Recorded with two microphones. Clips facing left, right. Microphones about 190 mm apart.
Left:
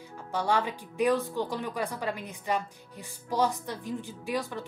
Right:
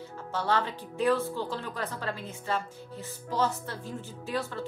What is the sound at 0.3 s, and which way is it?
Speech, 15° left (ahead or behind).